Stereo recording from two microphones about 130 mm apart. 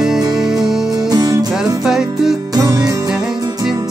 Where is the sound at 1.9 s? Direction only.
5° right (ahead or behind).